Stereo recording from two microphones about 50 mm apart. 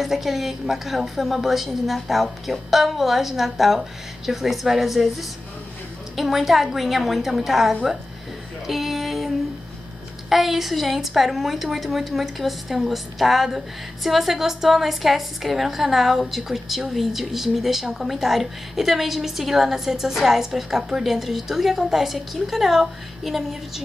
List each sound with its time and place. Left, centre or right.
0.0 s a woman's voice: centre
8.6 s music: centre
10.3 s a woman's voice: centre